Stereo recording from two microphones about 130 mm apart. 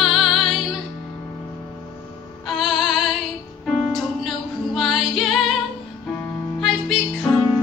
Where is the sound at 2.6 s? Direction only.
Centre (ahead or behind).